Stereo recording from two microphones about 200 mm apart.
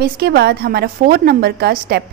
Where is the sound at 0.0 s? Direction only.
55° right (ahead or behind).